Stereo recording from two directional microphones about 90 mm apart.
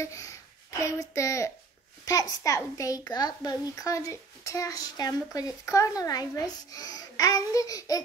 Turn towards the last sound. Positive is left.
turn(degrees=40)  # may be behind; listen again after turning